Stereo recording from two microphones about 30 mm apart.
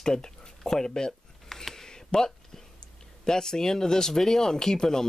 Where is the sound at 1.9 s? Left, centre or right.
Left.